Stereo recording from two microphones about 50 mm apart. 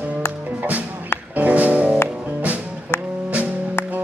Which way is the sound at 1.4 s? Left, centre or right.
Right.